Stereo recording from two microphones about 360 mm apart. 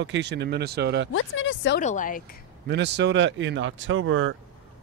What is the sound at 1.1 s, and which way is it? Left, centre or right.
Speech, left.